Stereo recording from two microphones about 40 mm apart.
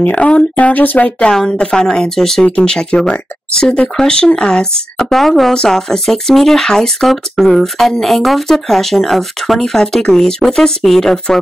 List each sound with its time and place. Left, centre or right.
0.2 s a sound: left
0.6 s speech: left
1.3 s speech: centre
2.4 s speech: left
5.1 s speech: centre